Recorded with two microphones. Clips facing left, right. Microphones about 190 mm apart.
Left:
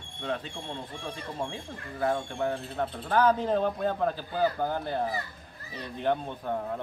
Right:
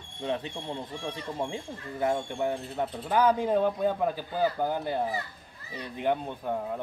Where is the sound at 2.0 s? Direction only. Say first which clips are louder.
Right 1 dB; 15° right (ahead or behind).